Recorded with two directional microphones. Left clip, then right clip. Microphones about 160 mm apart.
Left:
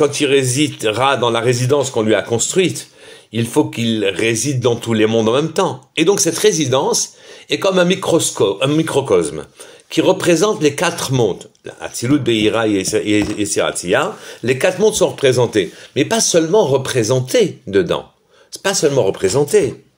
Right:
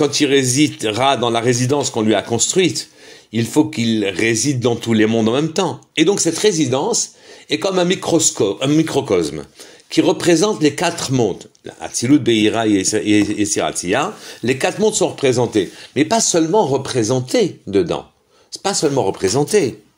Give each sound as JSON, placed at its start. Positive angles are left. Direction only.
{"t": 0.0, "sound": "a man's voice", "side_deg": -30}
{"t": 3.3, "sound": "speech", "side_deg": -30}